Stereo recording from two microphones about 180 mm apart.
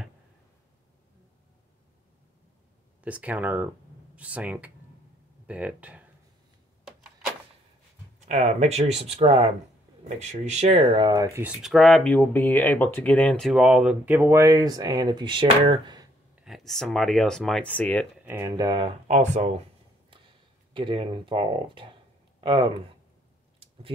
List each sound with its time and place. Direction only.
3.0 s speech: 5° right (ahead or behind)
8.3 s speech: 40° right (ahead or behind); by 11.5 s 15° right (ahead or behind)
11.6 s speech: centre (ahead or behind); by 16.1 s 25° right (ahead or behind)
16.3 s speech: centre (ahead or behind)
18.2 s speech: 10° right (ahead or behind)
18.6 s speech: 25° right (ahead or behind)
19.0 s speech: 40° right (ahead or behind)
20.7 s speech: 30° right (ahead or behind)